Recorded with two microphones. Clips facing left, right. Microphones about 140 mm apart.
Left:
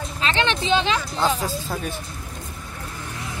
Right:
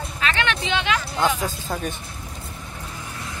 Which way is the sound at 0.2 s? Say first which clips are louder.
Left 2 dB; 30° left (ahead or behind).